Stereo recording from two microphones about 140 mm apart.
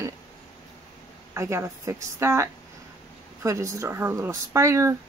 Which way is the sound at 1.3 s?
20° right (ahead or behind).